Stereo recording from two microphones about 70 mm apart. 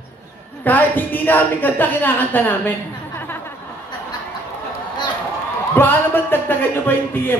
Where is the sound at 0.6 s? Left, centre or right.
Left.